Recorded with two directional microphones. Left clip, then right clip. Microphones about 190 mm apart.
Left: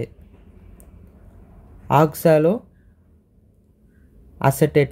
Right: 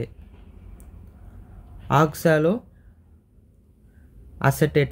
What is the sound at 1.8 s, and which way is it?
Speech, 20° left (ahead or behind).